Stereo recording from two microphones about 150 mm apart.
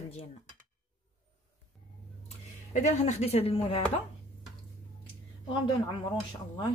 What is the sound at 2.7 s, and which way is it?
Speech, 50° left (ahead or behind).